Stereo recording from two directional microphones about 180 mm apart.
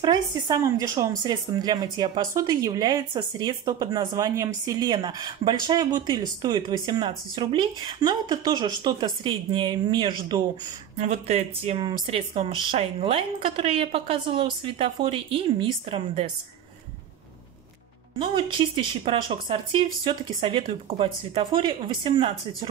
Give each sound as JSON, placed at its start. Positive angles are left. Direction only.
{"t": 0.0, "sound": "speech", "side_deg": -25}
{"t": 11.0, "sound": "a woman's voice", "side_deg": -35}
{"t": 19.0, "sound": "speech", "side_deg": -30}